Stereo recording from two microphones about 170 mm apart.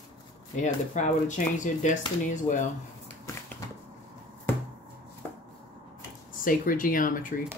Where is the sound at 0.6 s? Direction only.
45° left (ahead or behind).